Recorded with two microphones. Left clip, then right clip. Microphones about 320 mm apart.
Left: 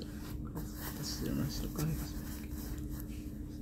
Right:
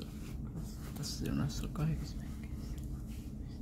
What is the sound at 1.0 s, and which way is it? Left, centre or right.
Speech, centre.